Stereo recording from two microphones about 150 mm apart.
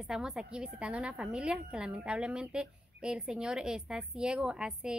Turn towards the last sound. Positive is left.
turn(degrees=-5)  # may be behind; listen again after turning